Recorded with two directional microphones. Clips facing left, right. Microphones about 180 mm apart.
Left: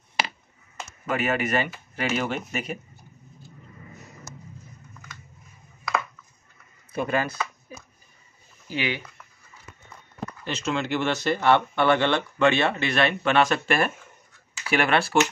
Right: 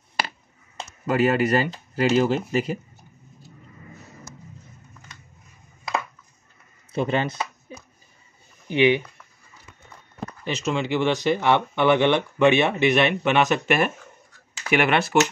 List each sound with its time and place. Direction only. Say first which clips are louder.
1.0 s speech: right 6 dB; 35° right (ahead or behind)
6.9 s speech: right 2 dB; 25° right (ahead or behind)
8.6 s speech: right 10 dB; 20° right (ahead or behind)
10.4 s speech: right 3 dB; 10° right (ahead or behind)